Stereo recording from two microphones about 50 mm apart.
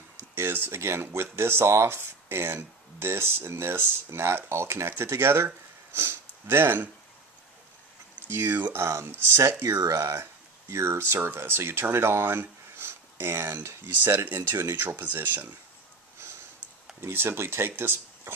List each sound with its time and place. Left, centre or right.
0.3 s speech: right
0.7 s speech: right
5.9 s speech: right
8.3 s speech: right
8.7 s speech: right
9.6 s speech: right
10.7 s speech: right
17.0 s speech: right